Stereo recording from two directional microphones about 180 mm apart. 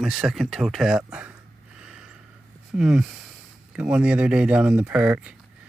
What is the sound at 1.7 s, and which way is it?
Snort, 5° right (ahead or behind).